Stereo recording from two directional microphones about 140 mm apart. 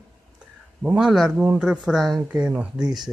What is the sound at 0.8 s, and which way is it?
Speech, 5° right (ahead or behind).